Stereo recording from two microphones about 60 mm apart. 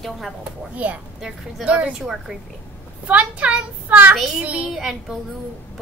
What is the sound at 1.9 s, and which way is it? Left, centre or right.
Speech, centre.